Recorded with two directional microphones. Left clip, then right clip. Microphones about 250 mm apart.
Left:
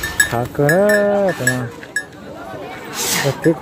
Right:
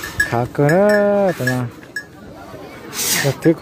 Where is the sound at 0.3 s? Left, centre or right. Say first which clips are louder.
Even; centre.